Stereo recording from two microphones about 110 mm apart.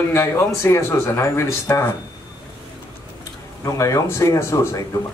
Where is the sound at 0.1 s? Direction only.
20° left (ahead or behind).